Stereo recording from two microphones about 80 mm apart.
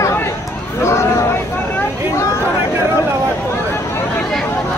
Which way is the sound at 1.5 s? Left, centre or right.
Left.